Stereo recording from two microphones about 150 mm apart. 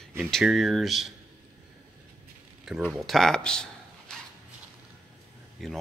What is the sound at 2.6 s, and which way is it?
Speech, 5° right (ahead or behind).